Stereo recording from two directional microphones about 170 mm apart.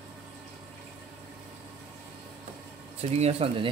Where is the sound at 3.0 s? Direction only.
40° right (ahead or behind).